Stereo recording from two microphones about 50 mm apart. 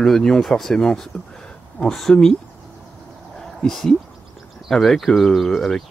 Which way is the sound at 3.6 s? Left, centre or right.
Centre.